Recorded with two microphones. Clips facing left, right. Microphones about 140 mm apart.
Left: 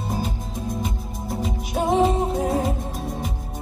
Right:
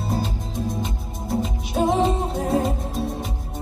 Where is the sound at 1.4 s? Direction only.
Centre (ahead or behind).